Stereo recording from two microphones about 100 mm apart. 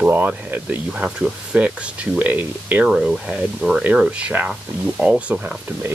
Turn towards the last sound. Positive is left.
turn(degrees=-15)  # may be behind; listen again after turning